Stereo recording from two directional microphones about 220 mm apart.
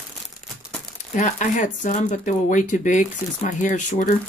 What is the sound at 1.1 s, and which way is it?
Speech, 35° left (ahead or behind).